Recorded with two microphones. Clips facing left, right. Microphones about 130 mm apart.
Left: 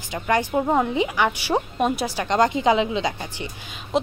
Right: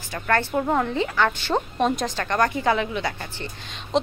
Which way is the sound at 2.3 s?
20° left (ahead or behind).